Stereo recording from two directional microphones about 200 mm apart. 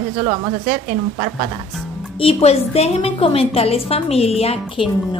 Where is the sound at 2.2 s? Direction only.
30° left (ahead or behind).